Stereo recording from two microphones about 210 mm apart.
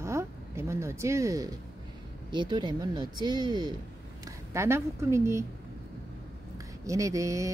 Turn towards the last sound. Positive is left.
turn(degrees=-15)  # may be behind; listen again after turning